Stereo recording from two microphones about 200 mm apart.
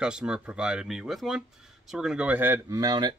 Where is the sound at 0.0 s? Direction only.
5° right (ahead or behind).